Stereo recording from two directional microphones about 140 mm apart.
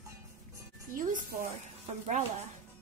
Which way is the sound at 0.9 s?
65° right (ahead or behind).